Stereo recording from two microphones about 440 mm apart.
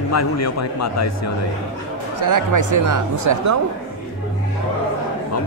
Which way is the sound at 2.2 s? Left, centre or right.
Right.